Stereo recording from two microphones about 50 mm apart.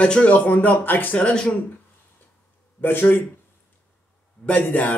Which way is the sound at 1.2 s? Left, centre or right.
Left.